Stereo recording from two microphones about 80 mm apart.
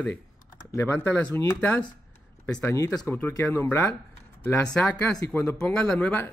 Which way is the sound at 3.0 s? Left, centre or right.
Centre.